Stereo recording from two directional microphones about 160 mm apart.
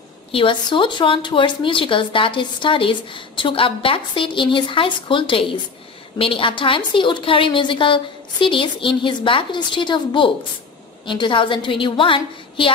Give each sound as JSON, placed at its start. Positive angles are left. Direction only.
{"t": 0.3, "sound": "speech", "side_deg": 30}